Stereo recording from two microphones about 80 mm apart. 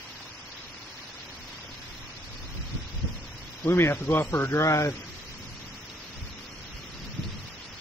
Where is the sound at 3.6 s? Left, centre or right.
Left.